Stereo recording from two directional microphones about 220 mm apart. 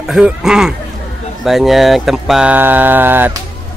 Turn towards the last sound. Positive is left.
turn(degrees=-10)  # may be behind; listen again after turning